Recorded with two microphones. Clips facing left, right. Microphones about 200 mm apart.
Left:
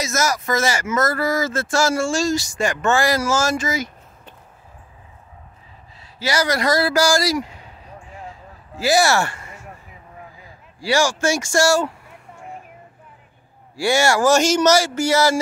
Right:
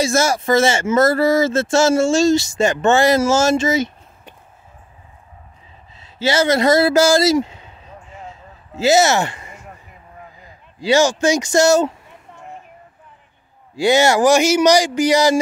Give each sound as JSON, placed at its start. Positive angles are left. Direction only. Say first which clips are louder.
{"t": 0.0, "sound": "speech", "louder": "right 5 dB", "side_deg": -30}
{"t": 5.9, "sound": "speech", "louder": "right 5 dB", "side_deg": -25}
{"t": 8.3, "sound": "a sound", "louder": "right 1 dB", "side_deg": -25}
{"t": 10.4, "sound": "speech", "louder": "right 6 dB", "side_deg": -20}
{"t": 13.7, "sound": "speech", "louder": "right 4 dB", "side_deg": -20}